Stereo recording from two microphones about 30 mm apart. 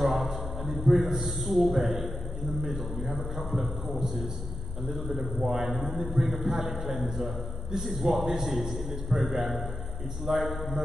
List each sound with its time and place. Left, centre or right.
0.0 s a man's voice: centre